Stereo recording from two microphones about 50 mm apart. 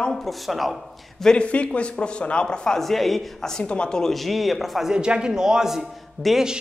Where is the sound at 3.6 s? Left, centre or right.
Left; by 4.9 s centre.